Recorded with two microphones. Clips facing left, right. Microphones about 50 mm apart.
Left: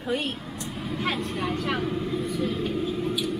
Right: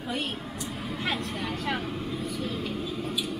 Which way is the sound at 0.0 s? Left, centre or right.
Centre.